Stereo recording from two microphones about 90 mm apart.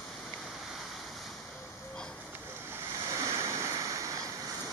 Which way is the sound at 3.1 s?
40° right (ahead or behind).